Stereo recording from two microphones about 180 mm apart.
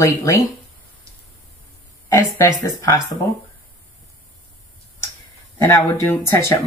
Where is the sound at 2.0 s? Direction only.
15° left (ahead or behind).